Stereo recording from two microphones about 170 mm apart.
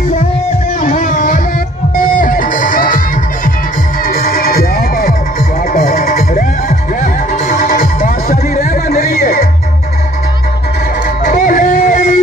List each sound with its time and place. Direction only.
0.7 s music: 50° left (ahead or behind)
4.0 s music: 60° left (ahead or behind)
9.1 s music: 65° left (ahead or behind)
11.2 s music: 50° left (ahead or behind)